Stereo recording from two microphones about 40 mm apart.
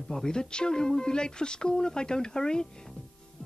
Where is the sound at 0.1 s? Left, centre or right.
Centre.